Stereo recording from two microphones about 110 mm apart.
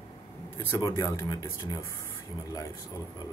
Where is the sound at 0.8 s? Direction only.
30° left (ahead or behind).